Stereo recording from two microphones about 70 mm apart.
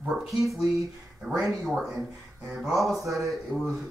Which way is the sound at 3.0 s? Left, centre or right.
Right.